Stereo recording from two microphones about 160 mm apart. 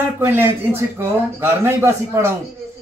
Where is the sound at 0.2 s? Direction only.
15° right (ahead or behind).